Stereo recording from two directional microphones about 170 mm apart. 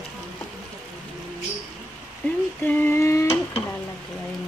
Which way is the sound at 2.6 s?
10° left (ahead or behind).